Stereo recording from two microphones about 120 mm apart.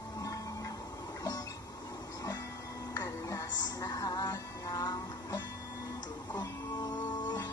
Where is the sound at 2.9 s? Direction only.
30° left (ahead or behind).